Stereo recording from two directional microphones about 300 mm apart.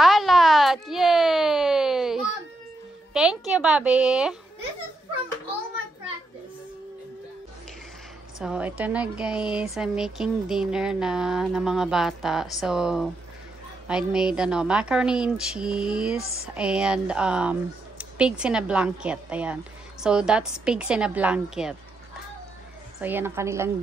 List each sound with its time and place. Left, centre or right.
0.0 s a sound: centre
3.1 s a woman's voice: centre
8.4 s a woman's voice: centre
22.9 s a woman's voice: centre